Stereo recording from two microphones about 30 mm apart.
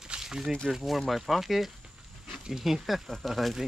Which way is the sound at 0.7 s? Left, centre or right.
Centre.